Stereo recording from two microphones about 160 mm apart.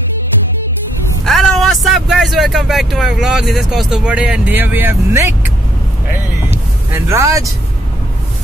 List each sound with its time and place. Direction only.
1.2 s speech: centre (ahead or behind); by 5.3 s 15° right (ahead or behind)
6.9 s speech: 15° right (ahead or behind)